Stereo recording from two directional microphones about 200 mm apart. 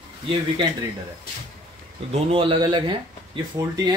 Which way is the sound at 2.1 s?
25° right (ahead or behind).